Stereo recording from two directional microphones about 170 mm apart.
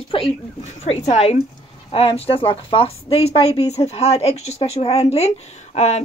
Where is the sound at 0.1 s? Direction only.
30° left (ahead or behind).